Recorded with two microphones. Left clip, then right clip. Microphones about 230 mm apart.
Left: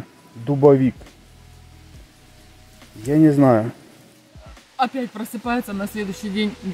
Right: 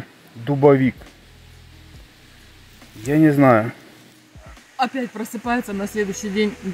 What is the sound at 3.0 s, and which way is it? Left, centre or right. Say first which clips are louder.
Speech: even; centre.